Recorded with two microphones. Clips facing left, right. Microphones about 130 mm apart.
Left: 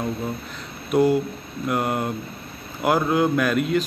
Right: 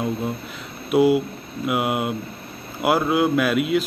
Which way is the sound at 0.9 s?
10° right (ahead or behind).